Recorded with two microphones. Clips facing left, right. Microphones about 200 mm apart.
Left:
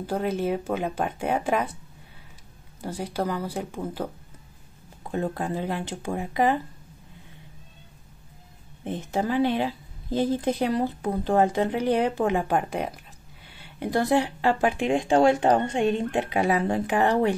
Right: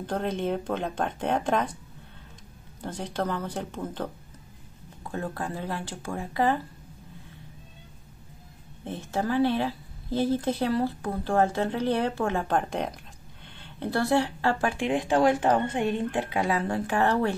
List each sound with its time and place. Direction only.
0.0 s a woman's voice: 5° left (ahead or behind)
2.8 s a woman's voice: 10° left (ahead or behind)
5.0 s speech: 20° left (ahead or behind)
8.8 s a woman's voice: 15° left (ahead or behind)